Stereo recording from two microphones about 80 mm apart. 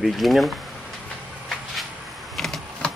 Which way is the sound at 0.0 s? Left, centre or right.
Centre.